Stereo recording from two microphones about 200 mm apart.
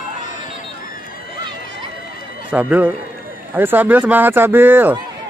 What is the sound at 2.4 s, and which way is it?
Speech, 10° right (ahead or behind).